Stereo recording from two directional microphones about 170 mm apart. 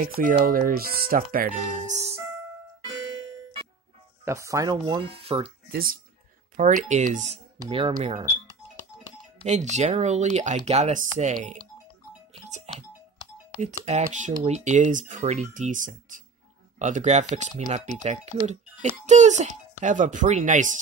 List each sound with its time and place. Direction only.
0.0 s speech: 55° right (ahead or behind)
4.2 s speech: 15° right (ahead or behind); by 5.5 s 35° right (ahead or behind)
5.7 s speech: 60° right (ahead or behind)
6.5 s a child's voice: 45° right (ahead or behind)
7.7 s speech: 30° right (ahead or behind)
9.5 s a child's voice: 45° right (ahead or behind)
12.7 s music: 40° right (ahead or behind)
13.6 s a child's voice: 45° right (ahead or behind)